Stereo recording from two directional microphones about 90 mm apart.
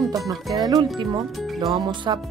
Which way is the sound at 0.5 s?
50° right (ahead or behind).